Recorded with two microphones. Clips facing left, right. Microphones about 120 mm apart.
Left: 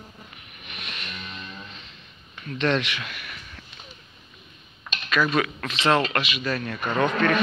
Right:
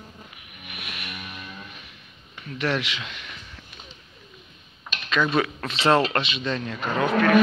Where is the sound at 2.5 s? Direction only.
10° right (ahead or behind).